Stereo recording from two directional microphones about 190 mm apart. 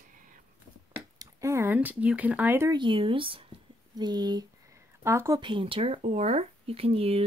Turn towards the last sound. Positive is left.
turn(degrees=-30)  # may be behind; listen again after turning